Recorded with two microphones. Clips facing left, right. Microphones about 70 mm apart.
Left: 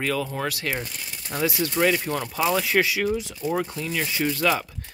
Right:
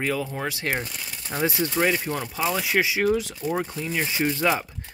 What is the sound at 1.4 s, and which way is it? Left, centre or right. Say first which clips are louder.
Speech: even; right.